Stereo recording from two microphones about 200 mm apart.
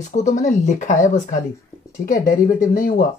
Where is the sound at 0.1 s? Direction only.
35° left (ahead or behind).